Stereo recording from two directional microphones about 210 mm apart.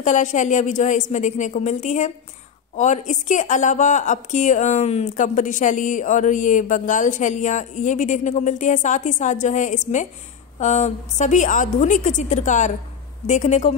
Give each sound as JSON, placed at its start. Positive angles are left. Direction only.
{"t": 0.0, "sound": "a woman's voice", "side_deg": 35}